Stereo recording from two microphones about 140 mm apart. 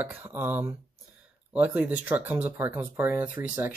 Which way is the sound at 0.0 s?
15° right (ahead or behind).